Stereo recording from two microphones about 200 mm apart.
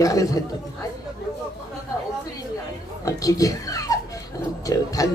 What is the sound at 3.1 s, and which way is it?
A man's voice, 15° left (ahead or behind).